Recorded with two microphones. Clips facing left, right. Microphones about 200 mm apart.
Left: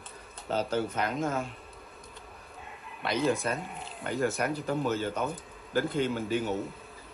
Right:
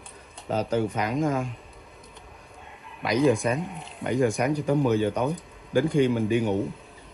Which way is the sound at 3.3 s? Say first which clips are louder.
Right 6 dB; 15° right (ahead or behind).